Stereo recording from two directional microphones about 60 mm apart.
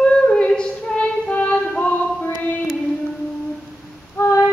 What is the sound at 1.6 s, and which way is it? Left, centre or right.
Music, left.